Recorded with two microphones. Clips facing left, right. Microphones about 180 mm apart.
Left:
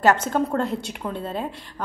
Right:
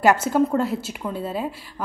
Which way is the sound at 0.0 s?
10° right (ahead or behind).